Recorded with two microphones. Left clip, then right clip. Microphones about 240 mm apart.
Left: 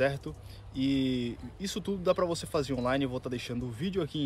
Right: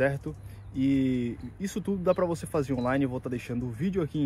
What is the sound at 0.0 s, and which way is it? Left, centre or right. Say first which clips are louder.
Speech: right 2 dB; centre.